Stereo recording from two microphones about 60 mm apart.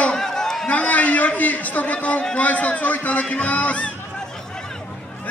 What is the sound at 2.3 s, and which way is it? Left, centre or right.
A man's voice, left.